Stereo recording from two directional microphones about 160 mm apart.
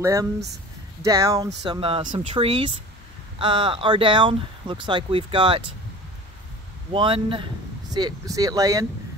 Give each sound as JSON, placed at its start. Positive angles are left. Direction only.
{"t": 0.0, "sound": "speech", "side_deg": -20}
{"t": 1.7, "sound": "speech", "side_deg": -30}
{"t": 6.9, "sound": "speech", "side_deg": -35}